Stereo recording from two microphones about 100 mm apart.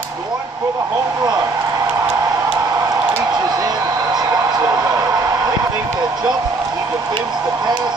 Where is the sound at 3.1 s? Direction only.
40° right (ahead or behind).